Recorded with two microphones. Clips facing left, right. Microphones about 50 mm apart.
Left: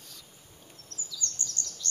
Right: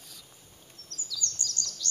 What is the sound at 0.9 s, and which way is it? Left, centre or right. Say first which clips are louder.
Bird vocalization: right 2 dB; left.